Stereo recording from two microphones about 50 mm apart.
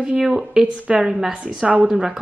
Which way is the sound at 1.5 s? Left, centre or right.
Centre.